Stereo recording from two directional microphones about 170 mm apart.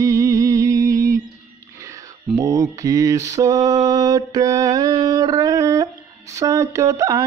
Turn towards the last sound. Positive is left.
turn(degrees=-20)  # may be behind; listen again after turning